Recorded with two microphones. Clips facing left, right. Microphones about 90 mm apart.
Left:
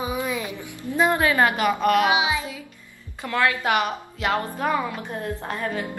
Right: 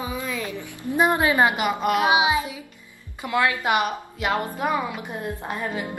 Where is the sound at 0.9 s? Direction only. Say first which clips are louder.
Even; 20° right (ahead or behind).